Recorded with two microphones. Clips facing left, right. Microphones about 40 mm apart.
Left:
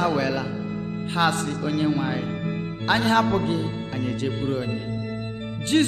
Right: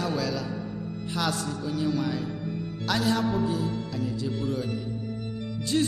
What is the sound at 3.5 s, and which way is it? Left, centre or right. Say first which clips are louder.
Speech: left 3 dB; left.